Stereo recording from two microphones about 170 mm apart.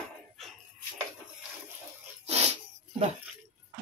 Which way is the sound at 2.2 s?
40° right (ahead or behind).